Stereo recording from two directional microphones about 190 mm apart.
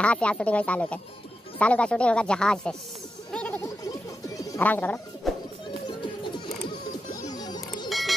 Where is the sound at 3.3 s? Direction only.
10° left (ahead or behind).